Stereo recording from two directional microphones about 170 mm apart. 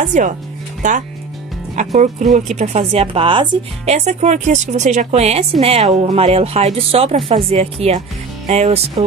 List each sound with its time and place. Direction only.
0.1 s speech: 45° right (ahead or behind)